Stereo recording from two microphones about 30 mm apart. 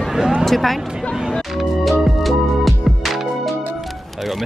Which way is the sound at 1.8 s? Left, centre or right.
Centre.